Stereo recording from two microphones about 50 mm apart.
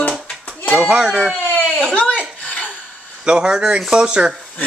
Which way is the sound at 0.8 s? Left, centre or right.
Centre.